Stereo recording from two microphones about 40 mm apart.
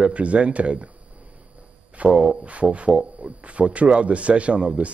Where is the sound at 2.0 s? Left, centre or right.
Right.